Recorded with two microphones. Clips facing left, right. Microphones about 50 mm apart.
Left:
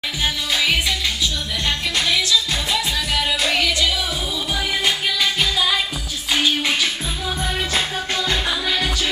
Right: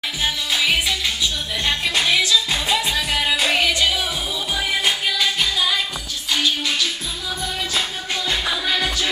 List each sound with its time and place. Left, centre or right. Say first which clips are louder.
0.2 s music: even; centre
1.7 s music: right 2 dB; centre
4.6 s music: even; centre
8.3 s music: right 2 dB; centre